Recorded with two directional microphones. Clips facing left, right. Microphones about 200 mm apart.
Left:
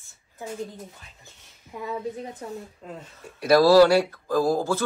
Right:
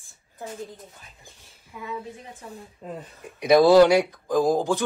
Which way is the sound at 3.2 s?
15° right (ahead or behind).